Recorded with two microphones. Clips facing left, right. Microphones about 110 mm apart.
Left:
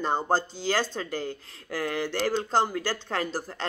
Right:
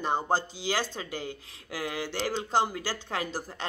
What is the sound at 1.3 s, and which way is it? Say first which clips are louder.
Speech: left 4 dB; 50° left (ahead or behind).